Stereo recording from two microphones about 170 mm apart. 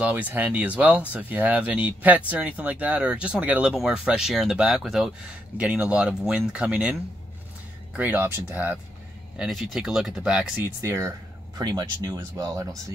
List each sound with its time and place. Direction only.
0.0 s speech: 10° right (ahead or behind)
9.4 s speech: centre (ahead or behind)
10.8 s speech: 15° right (ahead or behind)